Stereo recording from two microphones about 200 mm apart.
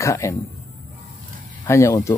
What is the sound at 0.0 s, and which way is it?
Speech, 15° left (ahead or behind).